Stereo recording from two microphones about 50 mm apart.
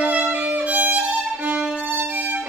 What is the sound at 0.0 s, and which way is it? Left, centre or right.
Violin, right.